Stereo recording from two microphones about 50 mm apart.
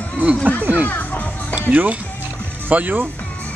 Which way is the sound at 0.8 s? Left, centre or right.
Left.